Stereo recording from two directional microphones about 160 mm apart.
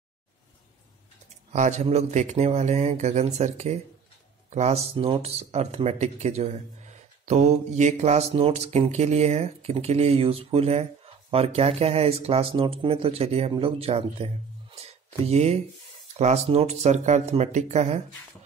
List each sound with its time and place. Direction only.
1.5 s speech: 45° right (ahead or behind)